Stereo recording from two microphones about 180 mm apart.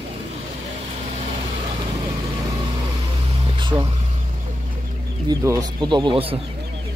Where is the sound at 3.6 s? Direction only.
25° right (ahead or behind).